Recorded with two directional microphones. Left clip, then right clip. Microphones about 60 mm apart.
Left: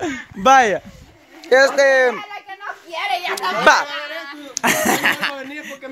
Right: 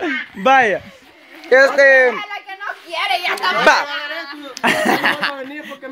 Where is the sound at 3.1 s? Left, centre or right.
Left.